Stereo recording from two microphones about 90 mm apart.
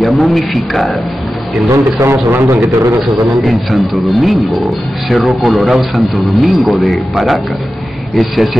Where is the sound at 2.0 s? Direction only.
30° right (ahead or behind).